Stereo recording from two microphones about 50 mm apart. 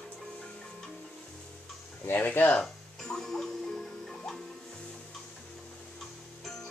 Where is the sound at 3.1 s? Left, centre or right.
Centre.